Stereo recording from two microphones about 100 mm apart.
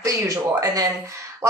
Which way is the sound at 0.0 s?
35° right (ahead or behind).